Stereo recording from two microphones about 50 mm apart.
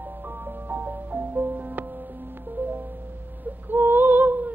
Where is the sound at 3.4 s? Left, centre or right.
Right.